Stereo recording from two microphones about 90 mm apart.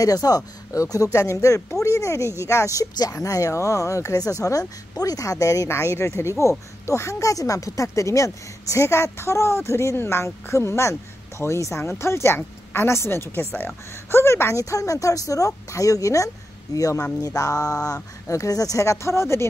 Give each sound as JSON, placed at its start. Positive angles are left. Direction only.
{"t": 0.0, "sound": "a woman's voice", "side_deg": 45}